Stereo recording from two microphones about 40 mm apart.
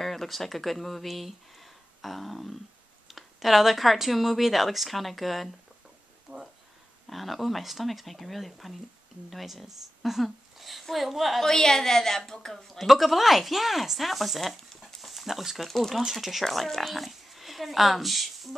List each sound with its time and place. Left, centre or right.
0.0 s speech: centre
6.3 s a sound: right
7.1 s speech: centre
11.4 s a woman's voice: centre
12.7 s speech: centre
15.0 s dog: centre
15.9 s speech: centre
16.4 s speech: centre